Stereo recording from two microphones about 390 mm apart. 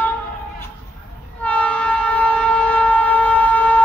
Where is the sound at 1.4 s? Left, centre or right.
Centre.